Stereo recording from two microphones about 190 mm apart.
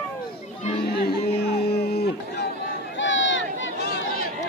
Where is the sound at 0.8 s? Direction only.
55° left (ahead or behind).